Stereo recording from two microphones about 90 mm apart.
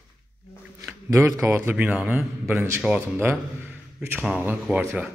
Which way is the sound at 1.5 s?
15° right (ahead or behind).